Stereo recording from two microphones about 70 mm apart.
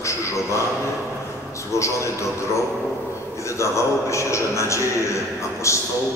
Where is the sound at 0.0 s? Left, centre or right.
Left.